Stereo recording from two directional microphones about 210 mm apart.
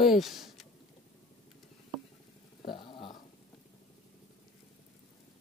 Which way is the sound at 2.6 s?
25° left (ahead or behind).